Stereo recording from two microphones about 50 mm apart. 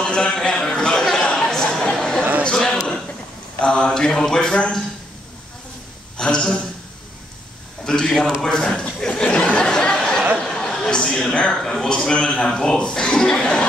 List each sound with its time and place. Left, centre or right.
0.0 s a sound: centre
3.6 s speech: centre
6.1 s a man's voice: centre
7.8 s speech: centre
8.4 s a sound: centre
10.4 s a man's voice: centre